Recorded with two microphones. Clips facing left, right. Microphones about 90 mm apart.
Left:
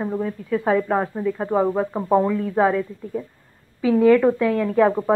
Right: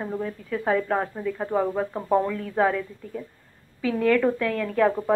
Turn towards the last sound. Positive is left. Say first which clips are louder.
# left 4 dB
turn(degrees=20)  # may be behind; listen again after turning